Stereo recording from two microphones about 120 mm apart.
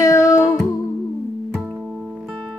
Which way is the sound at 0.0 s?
25° left (ahead or behind).